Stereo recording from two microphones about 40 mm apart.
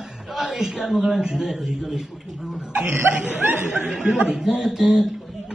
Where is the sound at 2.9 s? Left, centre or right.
Right.